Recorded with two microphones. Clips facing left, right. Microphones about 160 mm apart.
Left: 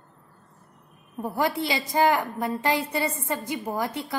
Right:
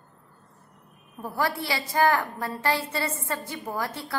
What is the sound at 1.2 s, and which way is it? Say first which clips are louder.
A woman's voice: left 3 dB; 20° left (ahead or behind).